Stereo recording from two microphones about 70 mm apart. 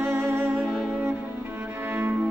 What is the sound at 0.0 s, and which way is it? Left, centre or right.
Music, right.